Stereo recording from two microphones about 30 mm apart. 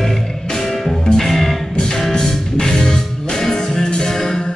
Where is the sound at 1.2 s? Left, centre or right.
Centre.